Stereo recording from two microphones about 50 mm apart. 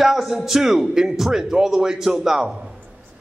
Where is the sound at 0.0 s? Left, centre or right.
Centre.